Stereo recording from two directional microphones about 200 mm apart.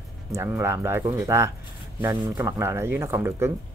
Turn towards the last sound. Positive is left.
turn(degrees=-15)  # may be behind; listen again after turning